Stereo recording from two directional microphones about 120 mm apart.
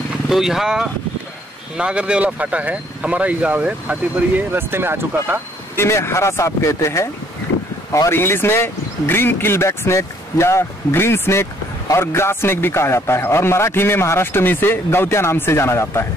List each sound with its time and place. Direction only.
0.3 s speech: 5° right (ahead or behind); by 5.4 s 20° right (ahead or behind)
5.8 s a man's voice: 20° left (ahead or behind)